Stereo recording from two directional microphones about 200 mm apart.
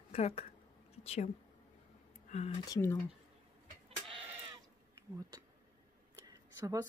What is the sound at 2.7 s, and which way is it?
Speech, 15° left (ahead or behind).